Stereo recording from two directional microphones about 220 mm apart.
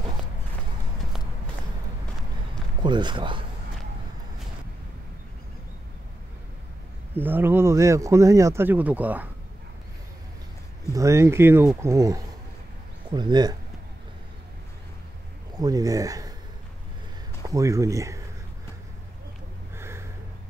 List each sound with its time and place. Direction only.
2.8 s speech: 20° right (ahead or behind)
7.2 s speech: 10° right (ahead or behind)
10.9 s speech: 15° right (ahead or behind)
15.5 s speech: 15° right (ahead or behind)
17.4 s speech: 15° right (ahead or behind)
19.8 s a sound: 10° right (ahead or behind)